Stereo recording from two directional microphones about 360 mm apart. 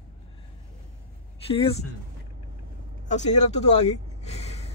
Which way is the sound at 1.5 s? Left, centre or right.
Centre.